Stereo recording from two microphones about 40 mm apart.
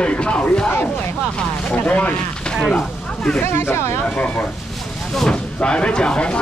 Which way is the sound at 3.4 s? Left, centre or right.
Left.